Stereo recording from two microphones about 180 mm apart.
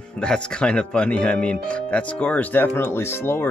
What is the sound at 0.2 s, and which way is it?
Speech, 5° left (ahead or behind).